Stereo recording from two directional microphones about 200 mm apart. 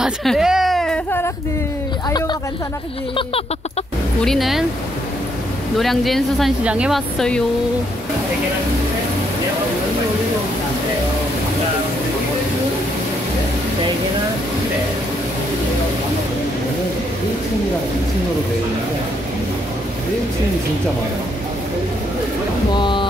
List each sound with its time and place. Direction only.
0.0 s whimper: centre (ahead or behind)
2.0 s speech: 20° left (ahead or behind)
4.2 s speech: centre (ahead or behind)
5.8 s speech: centre (ahead or behind)
22.8 s speech: 25° left (ahead or behind)